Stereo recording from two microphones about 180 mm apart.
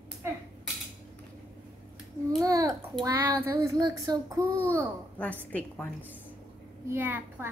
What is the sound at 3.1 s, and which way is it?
Child singing, 15° right (ahead or behind).